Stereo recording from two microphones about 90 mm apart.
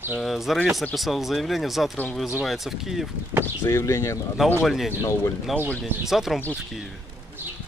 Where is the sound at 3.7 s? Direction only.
30° left (ahead or behind).